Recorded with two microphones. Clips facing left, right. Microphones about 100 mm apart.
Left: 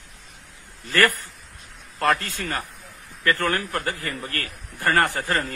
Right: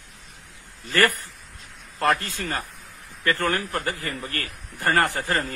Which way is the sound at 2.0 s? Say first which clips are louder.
Even; 25° right (ahead or behind).